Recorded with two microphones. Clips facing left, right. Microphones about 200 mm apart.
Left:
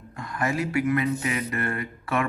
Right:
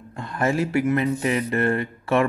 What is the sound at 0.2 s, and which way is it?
Speech, 30° right (ahead or behind).